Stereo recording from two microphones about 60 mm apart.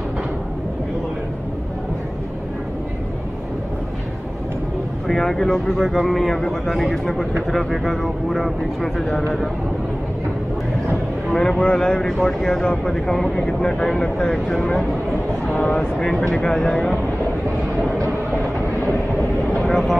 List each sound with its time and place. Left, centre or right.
5.0 s speech: centre
11.3 s speech: centre
15.4 s speech: left
19.6 s speech: centre